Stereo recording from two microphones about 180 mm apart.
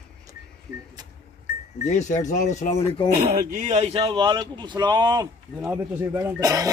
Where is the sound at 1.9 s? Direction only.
40° left (ahead or behind).